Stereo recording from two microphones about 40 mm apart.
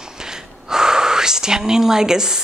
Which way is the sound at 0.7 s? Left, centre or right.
Centre.